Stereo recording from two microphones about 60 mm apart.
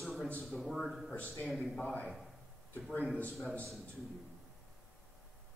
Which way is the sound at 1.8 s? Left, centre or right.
Centre.